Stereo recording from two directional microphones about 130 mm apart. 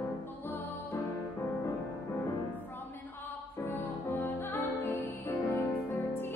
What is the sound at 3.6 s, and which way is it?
Music, 15° left (ahead or behind).